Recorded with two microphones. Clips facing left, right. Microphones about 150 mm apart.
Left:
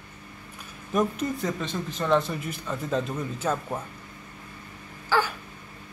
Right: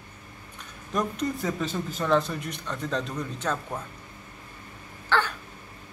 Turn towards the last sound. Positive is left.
turn(degrees=10)  # may be behind; listen again after turning